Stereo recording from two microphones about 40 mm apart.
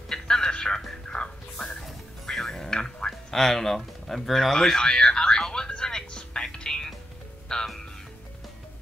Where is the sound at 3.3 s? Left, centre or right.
Centre.